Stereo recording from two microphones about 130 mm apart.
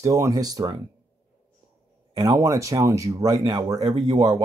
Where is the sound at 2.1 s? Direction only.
25° right (ahead or behind).